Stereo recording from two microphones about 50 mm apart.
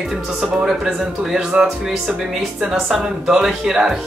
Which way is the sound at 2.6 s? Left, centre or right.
Centre.